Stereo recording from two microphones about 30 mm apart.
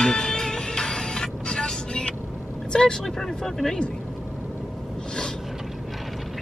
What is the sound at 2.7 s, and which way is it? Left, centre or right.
Speech, left.